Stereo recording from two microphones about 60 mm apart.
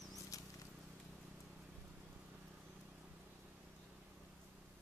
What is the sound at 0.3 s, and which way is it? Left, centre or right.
Patter, left.